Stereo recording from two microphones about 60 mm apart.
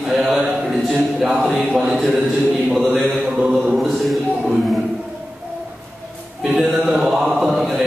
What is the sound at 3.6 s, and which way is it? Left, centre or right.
Chant, centre.